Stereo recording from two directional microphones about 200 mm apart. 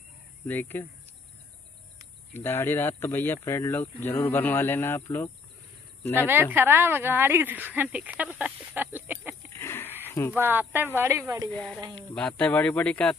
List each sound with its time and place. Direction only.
0.5 s speech: 10° left (ahead or behind)
2.3 s speech: 10° left (ahead or behind)
6.2 s speech: 10° right (ahead or behind)
9.5 s wheeze: 10° left (ahead or behind)
10.0 s a sound: 15° left (ahead or behind)
10.3 s speech: 10° right (ahead or behind)
11.5 s speech: 5° left (ahead or behind)